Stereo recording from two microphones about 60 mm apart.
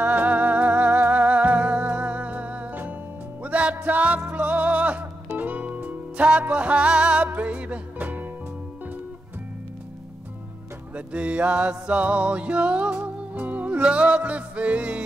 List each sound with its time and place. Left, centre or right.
0.0 s music: right
11.0 s music: right